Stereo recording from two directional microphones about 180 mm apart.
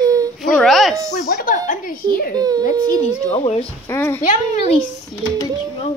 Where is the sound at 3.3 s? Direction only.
35° left (ahead or behind).